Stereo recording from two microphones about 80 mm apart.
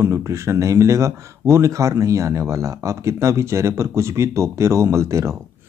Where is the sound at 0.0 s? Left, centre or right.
Right.